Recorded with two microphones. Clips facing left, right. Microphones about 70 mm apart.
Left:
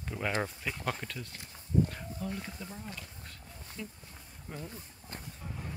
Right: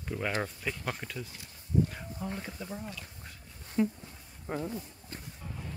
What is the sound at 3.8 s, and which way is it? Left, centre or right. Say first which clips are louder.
Speech: right 16 dB; right.